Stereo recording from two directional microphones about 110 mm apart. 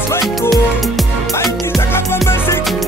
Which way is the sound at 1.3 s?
35° left (ahead or behind).